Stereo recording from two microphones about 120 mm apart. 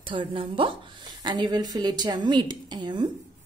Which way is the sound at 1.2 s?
35° right (ahead or behind).